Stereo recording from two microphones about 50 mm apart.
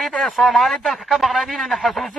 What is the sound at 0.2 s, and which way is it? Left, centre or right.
A man's voice, centre.